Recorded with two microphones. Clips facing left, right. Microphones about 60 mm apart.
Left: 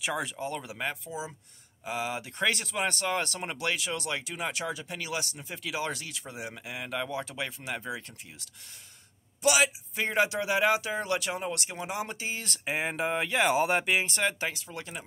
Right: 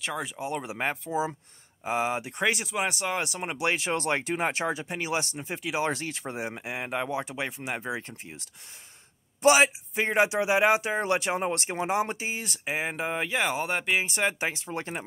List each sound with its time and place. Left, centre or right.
0.0 s speech: centre
0.4 s speech: right
0.7 s speech: right
1.9 s speech: right
3.7 s speech: right
9.9 s speech: right
12.3 s speech: centre
14.6 s speech: right